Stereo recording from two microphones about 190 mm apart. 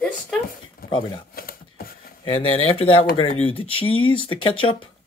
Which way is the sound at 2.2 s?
30° left (ahead or behind).